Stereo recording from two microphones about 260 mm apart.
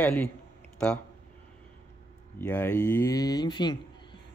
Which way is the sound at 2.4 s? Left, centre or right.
Centre.